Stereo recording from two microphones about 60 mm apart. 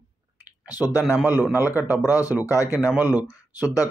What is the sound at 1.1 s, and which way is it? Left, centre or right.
Speech, right.